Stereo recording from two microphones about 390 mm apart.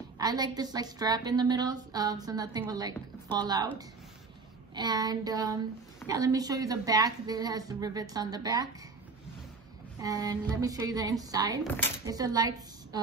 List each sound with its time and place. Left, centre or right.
0.2 s a woman's voice: centre
4.7 s a woman's voice: centre
9.9 s a woman's voice: centre